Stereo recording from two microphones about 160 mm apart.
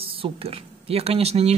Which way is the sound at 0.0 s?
35° right (ahead or behind).